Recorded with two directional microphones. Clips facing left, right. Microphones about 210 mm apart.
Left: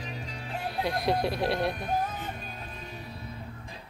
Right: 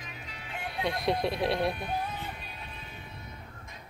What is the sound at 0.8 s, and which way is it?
A woman's voice, centre (ahead or behind).